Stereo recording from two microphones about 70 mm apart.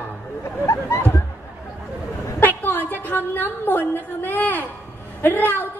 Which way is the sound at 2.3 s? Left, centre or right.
Left.